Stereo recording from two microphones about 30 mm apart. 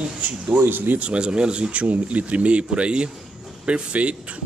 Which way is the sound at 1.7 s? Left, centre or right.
Right.